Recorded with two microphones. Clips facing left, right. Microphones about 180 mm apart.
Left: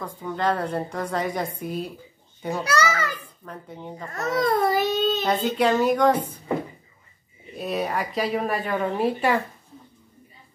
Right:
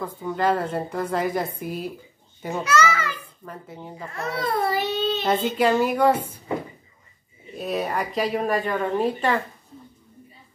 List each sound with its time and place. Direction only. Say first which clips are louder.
0.0 s speech: right 2 dB; 5° right (ahead or behind)
2.6 s a child's voice: right 2 dB; 35° left (ahead or behind)
3.4 s speech: left 1 dB; 5° right (ahead or behind)
4.1 s speech: left 4 dB; 45° left (ahead or behind)
5.6 s a woman's voice: left 1 dB; 5° right (ahead or behind)
7.5 s speech: even; centre (ahead or behind)